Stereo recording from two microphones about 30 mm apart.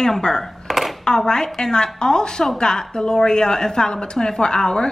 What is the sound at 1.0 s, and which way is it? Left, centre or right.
A woman's voice, left.